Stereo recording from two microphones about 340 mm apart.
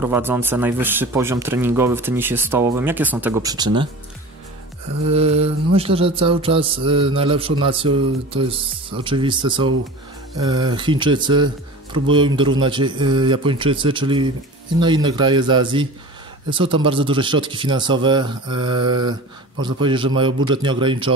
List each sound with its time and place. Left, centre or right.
0.0 s speech: centre
5.1 s speech: centre